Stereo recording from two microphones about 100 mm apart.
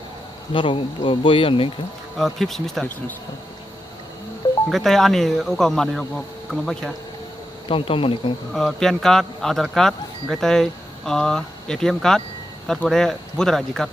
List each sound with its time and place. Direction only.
0.5 s speech: 60° left (ahead or behind)
2.1 s speech: 5° left (ahead or behind)
4.6 s speech: centre (ahead or behind)
7.6 s speech: 65° left (ahead or behind)
8.5 s speech: 5° left (ahead or behind)